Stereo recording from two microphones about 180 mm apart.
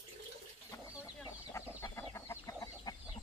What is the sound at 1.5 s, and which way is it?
Chicken, 15° left (ahead or behind).